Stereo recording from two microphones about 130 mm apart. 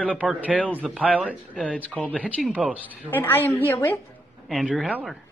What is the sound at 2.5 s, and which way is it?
Speech, 10° right (ahead or behind).